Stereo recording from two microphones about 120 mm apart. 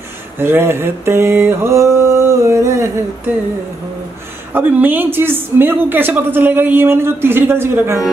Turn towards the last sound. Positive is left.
turn(degrees=-20)  # may be behind; listen again after turning